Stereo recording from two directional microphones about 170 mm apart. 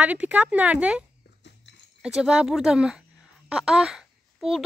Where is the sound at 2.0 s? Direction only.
5° right (ahead or behind).